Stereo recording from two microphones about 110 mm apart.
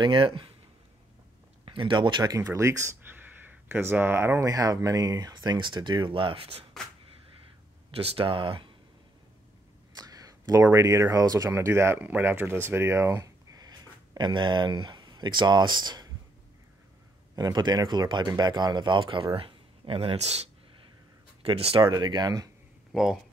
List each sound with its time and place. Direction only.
0.0 s speech: 50° right (ahead or behind)
1.7 s speech: 50° right (ahead or behind)
2.3 s speech: 25° right (ahead or behind); by 6.6 s 55° right (ahead or behind)
7.9 s speech: 60° right (ahead or behind)
9.9 s speech: 35° right (ahead or behind)
17.4 s speech: 40° right (ahead or behind); by 20.2 s 55° right (ahead or behind)
20.2 s speech: 75° right (ahead or behind)
21.4 s speech: 60° right (ahead or behind)
21.8 s speech: 40° right (ahead or behind)